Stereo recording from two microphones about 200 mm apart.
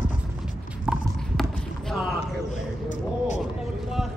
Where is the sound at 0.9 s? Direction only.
5° right (ahead or behind).